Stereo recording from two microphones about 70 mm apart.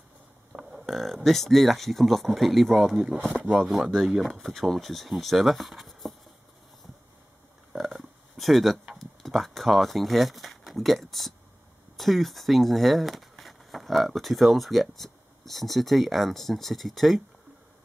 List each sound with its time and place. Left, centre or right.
0.5 s speech: centre
3.3 s speech: right
3.6 s speech: centre
7.7 s a sound: centre
8.9 s speech: centre